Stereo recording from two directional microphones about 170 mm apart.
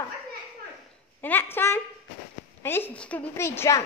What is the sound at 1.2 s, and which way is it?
A woman's voice, 10° left (ahead or behind).